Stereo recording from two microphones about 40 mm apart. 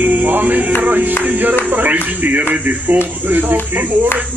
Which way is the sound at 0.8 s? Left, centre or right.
Right.